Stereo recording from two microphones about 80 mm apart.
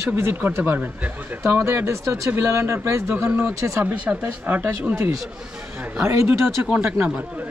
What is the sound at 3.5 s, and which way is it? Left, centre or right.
Speech, right.